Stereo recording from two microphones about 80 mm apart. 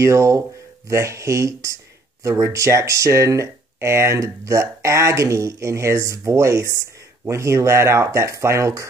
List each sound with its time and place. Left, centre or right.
0.0 s speech: right